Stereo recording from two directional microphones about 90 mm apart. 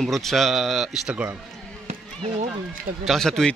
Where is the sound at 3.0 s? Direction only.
Centre (ahead or behind).